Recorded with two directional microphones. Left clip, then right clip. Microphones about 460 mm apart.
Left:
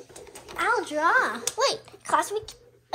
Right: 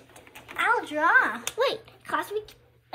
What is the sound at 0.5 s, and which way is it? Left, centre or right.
A woman's voice, centre.